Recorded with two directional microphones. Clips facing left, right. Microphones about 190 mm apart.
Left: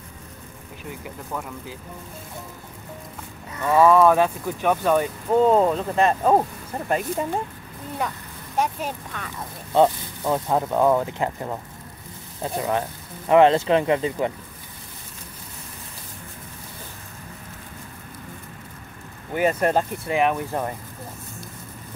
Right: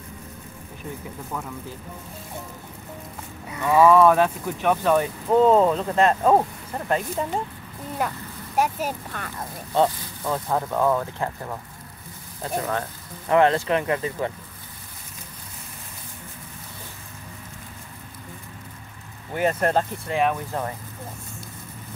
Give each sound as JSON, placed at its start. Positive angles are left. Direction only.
{"t": 3.5, "sound": "speech", "side_deg": -10}
{"t": 8.5, "sound": "speech", "side_deg": -5}
{"t": 9.8, "sound": "speech", "side_deg": 15}
{"t": 13.3, "sound": "speech", "side_deg": 20}
{"t": 19.3, "sound": "speech", "side_deg": 10}